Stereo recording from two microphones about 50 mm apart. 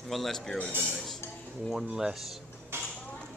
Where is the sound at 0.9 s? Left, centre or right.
Centre.